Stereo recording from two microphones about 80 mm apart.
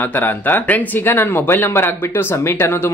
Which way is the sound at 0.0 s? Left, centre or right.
Left.